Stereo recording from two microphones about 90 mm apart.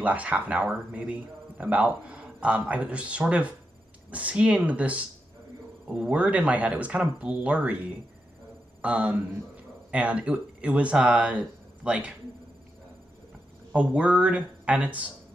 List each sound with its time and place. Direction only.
0.0 s speech: 15° right (ahead or behind)
13.7 s speech: 15° right (ahead or behind)